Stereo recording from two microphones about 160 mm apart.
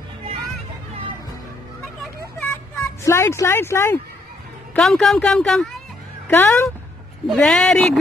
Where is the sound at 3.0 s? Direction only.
15° left (ahead or behind).